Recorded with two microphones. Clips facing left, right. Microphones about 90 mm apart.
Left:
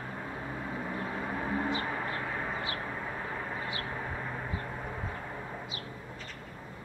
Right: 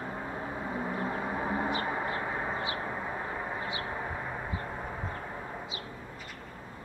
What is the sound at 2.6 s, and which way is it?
Vehicle, 15° right (ahead or behind).